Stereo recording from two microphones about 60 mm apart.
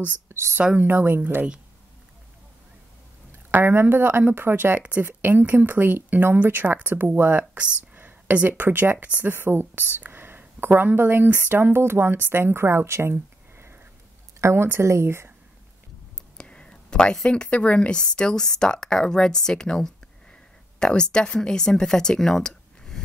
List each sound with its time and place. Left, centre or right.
0.3 s a sound: right
0.7 s speech: right
3.5 s speech: right
9.3 s a woman's voice: right
16.3 s speech: centre